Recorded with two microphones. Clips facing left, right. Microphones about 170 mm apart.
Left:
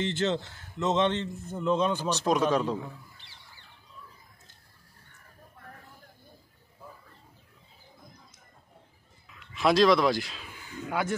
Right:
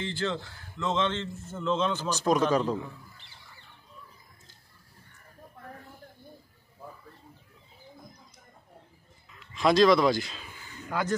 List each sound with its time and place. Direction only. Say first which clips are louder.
0.0 s a man's voice: left 4 dB; 20° left (ahead or behind)
2.0 s speech: right 4 dB; centre (ahead or behind)
9.5 s speech: right 1 dB; centre (ahead or behind)